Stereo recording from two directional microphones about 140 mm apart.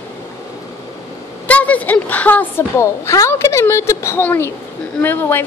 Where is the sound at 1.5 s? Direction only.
10° left (ahead or behind).